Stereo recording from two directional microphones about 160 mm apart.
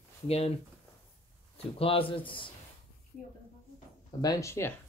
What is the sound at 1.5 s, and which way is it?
Speech, 35° left (ahead or behind).